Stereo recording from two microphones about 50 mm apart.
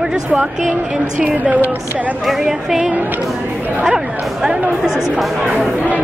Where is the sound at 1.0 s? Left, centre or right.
Right.